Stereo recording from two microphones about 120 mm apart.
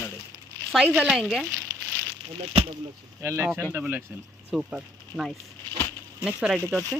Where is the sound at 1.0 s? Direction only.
5° right (ahead or behind).